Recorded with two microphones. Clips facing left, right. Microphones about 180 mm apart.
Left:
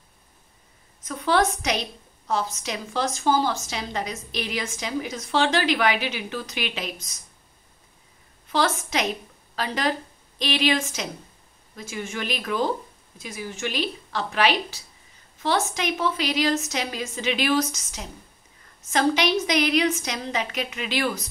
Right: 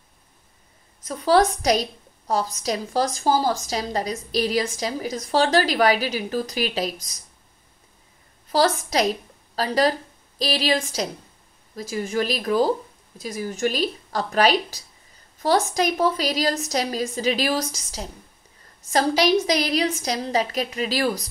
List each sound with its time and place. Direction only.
1.0 s a woman's voice: 35° right (ahead or behind)
8.5 s a woman's voice: 35° right (ahead or behind)